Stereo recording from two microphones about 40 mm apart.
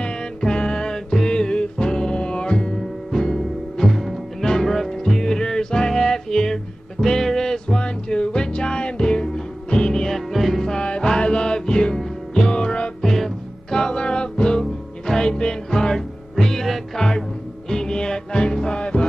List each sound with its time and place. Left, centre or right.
0.0 s music: centre
3.9 s music: centre
10.7 s music: left
13.1 s music: centre